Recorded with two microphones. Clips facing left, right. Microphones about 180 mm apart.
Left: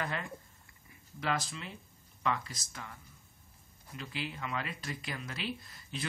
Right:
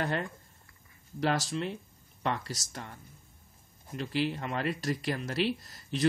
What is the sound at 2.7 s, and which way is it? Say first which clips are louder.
Speech: right 4 dB; 35° right (ahead or behind).